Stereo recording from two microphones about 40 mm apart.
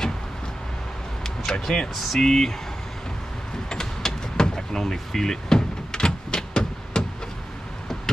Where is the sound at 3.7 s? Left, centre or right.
Centre.